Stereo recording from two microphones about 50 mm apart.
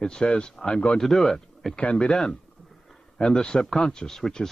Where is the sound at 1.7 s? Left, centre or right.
Left.